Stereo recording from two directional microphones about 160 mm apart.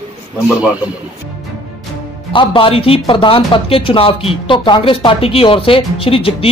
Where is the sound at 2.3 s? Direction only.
30° left (ahead or behind).